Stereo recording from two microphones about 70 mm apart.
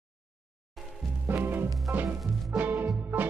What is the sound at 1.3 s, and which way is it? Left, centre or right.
Music, right.